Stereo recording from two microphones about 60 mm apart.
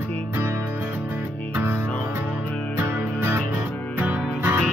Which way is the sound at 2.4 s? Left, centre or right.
Left.